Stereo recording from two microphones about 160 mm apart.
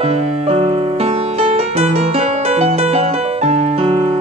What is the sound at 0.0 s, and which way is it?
Music, 45° right (ahead or behind).